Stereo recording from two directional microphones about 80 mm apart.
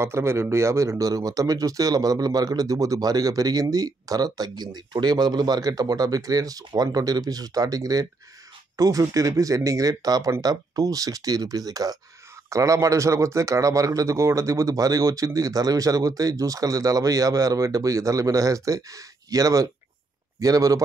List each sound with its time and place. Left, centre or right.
0.0 s speech: right